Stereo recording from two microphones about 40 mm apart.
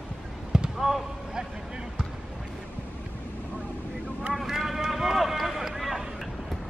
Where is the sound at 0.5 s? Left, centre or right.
Centre.